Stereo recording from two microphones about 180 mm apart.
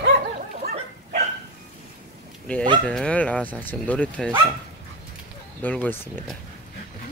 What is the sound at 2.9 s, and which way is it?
Speech, 5° left (ahead or behind).